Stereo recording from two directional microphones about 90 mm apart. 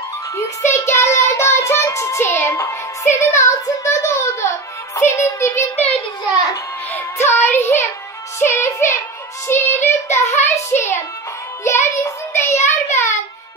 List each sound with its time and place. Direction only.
0.4 s child singing: 35° left (ahead or behind)
6.9 s music: 25° left (ahead or behind)
11.6 s a child's voice: 30° left (ahead or behind)